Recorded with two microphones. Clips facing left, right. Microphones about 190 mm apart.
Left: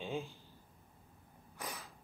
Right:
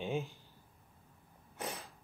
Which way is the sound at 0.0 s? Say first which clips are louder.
Right 3 dB; 20° right (ahead or behind).